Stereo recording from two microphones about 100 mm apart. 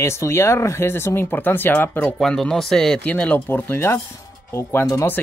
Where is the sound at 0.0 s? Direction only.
25° left (ahead or behind).